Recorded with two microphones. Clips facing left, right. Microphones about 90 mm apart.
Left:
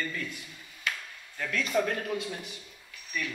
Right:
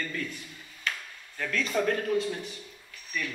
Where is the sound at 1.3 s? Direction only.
40° right (ahead or behind).